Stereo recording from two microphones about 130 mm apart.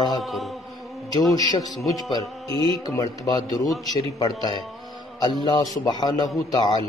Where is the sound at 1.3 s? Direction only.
30° left (ahead or behind).